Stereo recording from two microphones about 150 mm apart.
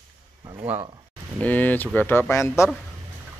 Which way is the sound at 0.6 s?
15° right (ahead or behind).